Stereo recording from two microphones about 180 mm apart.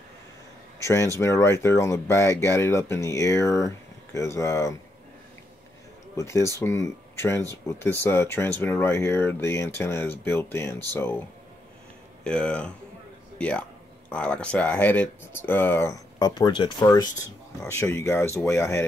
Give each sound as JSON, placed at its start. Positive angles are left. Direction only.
{"t": 0.7, "sound": "speech", "side_deg": 15}
{"t": 6.1, "sound": "speech", "side_deg": 15}
{"t": 12.2, "sound": "speech", "side_deg": 5}